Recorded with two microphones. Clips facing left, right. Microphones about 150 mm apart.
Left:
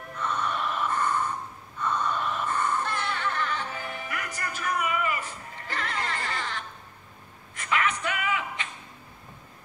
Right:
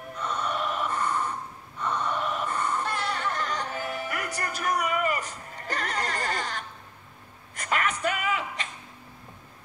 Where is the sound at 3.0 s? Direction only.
40° right (ahead or behind).